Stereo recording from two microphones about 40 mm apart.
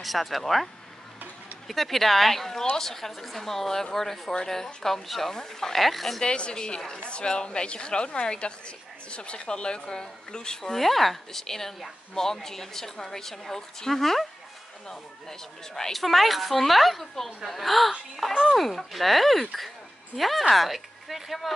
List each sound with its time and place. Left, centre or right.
0.0 s a woman's voice: centre
1.7 s a woman's voice: centre
6.2 s a woman's voice: left
15.9 s a woman's voice: centre